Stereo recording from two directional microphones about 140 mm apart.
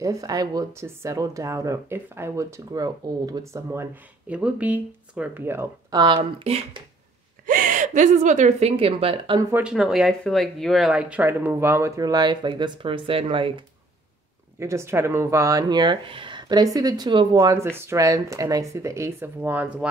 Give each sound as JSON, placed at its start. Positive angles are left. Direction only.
{"t": 0.0, "sound": "speech", "side_deg": -25}
{"t": 4.4, "sound": "speech", "side_deg": -10}
{"t": 7.4, "sound": "speech", "side_deg": -75}
{"t": 9.5, "sound": "speech", "side_deg": -5}
{"t": 14.6, "sound": "speech", "side_deg": -20}